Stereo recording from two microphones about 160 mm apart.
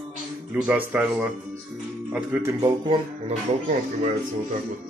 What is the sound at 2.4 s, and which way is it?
Speech, 25° right (ahead or behind).